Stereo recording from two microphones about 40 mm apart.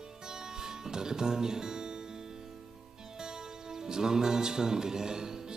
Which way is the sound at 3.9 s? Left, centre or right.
Centre.